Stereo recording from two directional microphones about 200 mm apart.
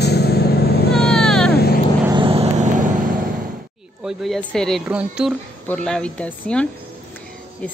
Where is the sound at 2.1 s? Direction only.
25° right (ahead or behind).